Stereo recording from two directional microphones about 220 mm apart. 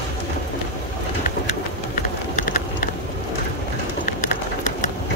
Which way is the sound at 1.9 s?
40° left (ahead or behind).